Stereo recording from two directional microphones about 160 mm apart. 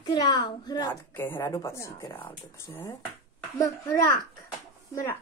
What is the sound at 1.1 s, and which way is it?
Speech, 15° left (ahead or behind).